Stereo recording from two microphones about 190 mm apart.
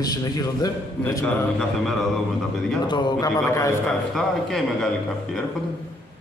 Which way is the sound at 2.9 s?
25° left (ahead or behind).